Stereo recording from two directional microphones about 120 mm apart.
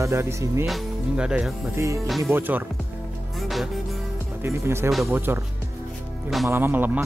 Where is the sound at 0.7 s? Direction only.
5° right (ahead or behind).